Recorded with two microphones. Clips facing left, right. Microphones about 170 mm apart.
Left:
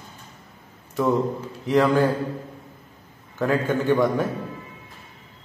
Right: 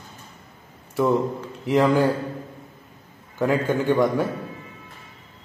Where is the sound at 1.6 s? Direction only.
10° right (ahead or behind).